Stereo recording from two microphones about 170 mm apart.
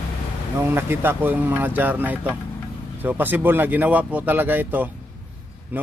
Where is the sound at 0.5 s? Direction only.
15° right (ahead or behind).